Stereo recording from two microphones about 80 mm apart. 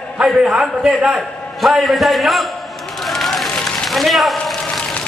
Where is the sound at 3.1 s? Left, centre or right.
Centre.